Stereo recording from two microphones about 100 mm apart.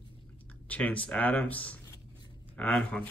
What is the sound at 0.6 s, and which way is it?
Speech, 15° left (ahead or behind).